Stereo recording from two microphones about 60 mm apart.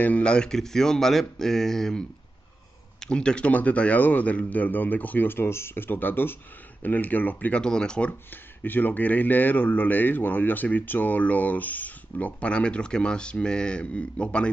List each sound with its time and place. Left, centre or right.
0.0 s speech: left
7.6 s speech: centre
8.6 s speech: left